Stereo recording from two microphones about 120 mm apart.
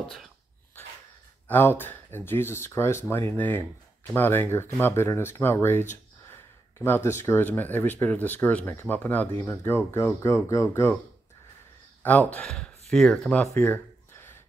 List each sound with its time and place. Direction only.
1.5 s speech: 15° left (ahead or behind)
12.0 s speech: 15° left (ahead or behind)
13.6 s a sound: 20° left (ahead or behind)